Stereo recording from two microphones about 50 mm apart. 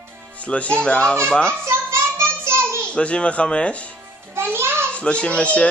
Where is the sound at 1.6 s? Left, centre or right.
Right.